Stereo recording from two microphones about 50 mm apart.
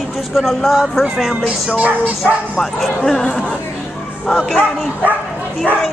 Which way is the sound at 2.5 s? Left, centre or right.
Centre.